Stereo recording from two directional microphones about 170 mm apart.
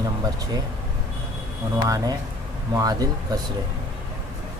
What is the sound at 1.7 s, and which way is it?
Speech, 20° right (ahead or behind).